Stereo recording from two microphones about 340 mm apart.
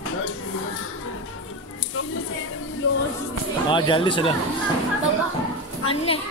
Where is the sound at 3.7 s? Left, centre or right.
Centre.